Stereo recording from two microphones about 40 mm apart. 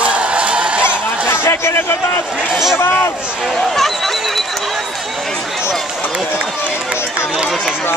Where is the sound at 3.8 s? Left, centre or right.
Centre.